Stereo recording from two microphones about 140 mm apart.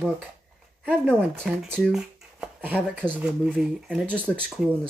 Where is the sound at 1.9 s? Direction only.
10° right (ahead or behind).